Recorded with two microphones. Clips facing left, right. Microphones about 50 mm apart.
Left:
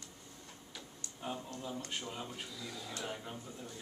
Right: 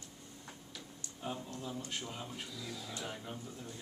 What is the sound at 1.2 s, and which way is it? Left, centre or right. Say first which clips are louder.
Speech: even; centre.